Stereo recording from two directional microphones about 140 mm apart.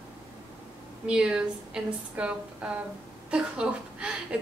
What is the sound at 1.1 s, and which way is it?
A woman's voice, 5° right (ahead or behind).